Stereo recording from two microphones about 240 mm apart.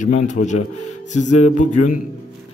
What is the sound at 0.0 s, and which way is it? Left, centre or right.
A man's voice, left.